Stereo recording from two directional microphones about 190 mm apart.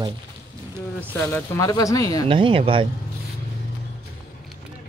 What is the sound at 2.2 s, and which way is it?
Speech, 25° right (ahead or behind).